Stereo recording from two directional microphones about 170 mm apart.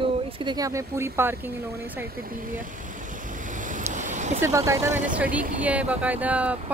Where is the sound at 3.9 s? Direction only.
45° right (ahead or behind).